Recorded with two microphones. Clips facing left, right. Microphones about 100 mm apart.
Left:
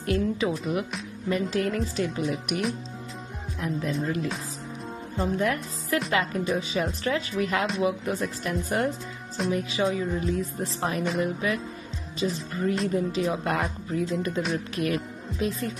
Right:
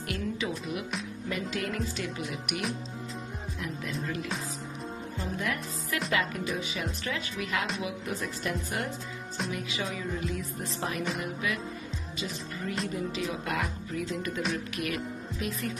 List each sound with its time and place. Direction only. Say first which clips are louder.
0.0 s music: left 7 dB; 35° left (ahead or behind)
4.0 s music: left 5 dB; 35° left (ahead or behind)
15.4 s music: left 7 dB; 30° left (ahead or behind)